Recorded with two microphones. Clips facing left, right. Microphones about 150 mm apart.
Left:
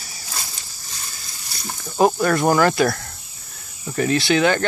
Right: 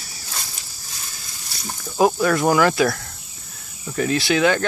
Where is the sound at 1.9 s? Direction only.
Centre (ahead or behind).